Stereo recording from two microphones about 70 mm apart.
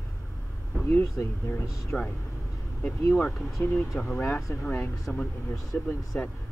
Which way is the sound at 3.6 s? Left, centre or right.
Left.